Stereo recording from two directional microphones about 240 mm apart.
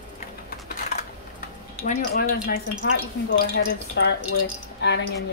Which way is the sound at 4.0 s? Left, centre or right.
Left.